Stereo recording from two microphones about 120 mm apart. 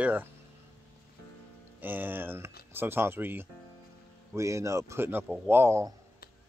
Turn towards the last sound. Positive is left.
turn(degrees=-20)  # may be behind; listen again after turning